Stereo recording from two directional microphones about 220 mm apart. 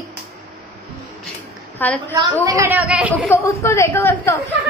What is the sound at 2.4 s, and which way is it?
Speech, 10° right (ahead or behind).